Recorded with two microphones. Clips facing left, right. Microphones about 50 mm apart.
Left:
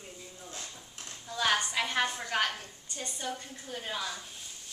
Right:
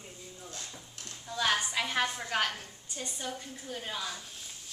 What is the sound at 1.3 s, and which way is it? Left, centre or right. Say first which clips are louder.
Speech: left 1 dB; centre.